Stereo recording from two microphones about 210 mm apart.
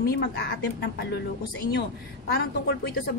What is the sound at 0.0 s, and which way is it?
Speech, 50° left (ahead or behind).